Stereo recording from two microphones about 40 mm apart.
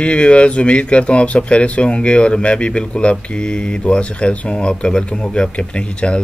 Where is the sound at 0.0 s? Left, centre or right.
Left.